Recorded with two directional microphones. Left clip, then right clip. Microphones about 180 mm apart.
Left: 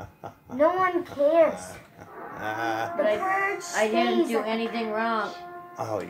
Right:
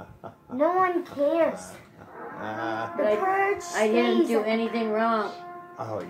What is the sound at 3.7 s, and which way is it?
A woman's voice, 5° right (ahead or behind).